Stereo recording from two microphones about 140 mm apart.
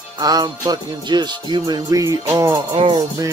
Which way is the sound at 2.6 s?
35° right (ahead or behind).